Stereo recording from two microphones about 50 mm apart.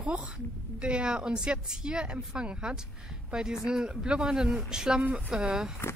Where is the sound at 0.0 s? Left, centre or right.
Right.